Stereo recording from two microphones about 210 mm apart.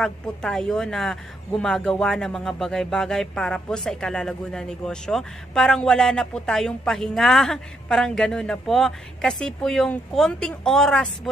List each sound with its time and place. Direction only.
0.0 s speech: 5° left (ahead or behind)